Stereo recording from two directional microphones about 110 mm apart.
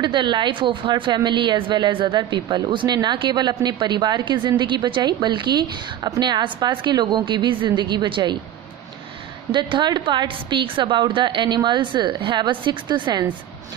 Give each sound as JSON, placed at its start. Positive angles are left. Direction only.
{"t": 0.0, "sound": "a woman's voice", "side_deg": -45}
{"t": 9.5, "sound": "a woman's voice", "side_deg": -45}